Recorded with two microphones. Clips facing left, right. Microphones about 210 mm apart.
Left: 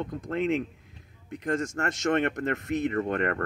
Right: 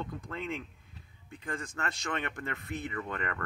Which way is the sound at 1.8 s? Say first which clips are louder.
Left 10 dB; 55° left (ahead or behind).